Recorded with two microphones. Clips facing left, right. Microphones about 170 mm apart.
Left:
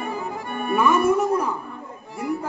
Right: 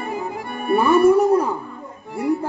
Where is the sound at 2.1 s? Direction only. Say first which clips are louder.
Right 5 dB; 35° right (ahead or behind).